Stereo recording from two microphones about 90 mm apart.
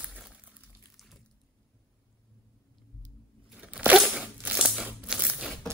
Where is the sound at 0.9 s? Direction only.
Centre (ahead or behind).